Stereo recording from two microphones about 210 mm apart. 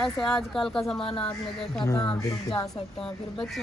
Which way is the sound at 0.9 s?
25° left (ahead or behind).